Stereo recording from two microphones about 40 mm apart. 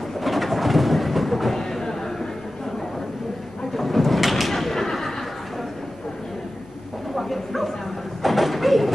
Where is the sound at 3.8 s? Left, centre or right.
Centre.